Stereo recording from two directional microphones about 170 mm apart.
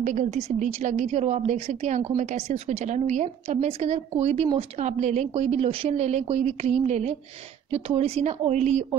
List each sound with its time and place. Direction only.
0.0 s a woman's voice: 45° right (ahead or behind)